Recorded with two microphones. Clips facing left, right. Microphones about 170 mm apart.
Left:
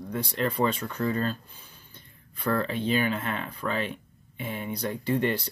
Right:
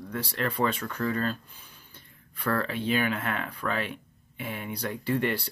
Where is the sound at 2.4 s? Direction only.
15° left (ahead or behind).